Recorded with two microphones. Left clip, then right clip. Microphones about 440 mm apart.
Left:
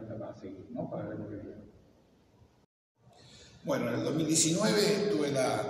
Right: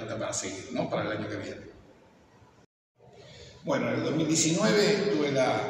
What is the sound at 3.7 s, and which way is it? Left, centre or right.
A man's voice, left.